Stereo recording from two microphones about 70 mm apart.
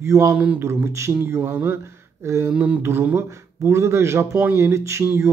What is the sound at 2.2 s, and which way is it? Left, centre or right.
Speech, right.